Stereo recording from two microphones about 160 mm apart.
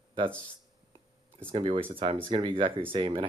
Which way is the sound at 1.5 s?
35° right (ahead or behind).